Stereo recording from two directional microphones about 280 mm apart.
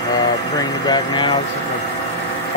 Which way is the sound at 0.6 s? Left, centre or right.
Centre.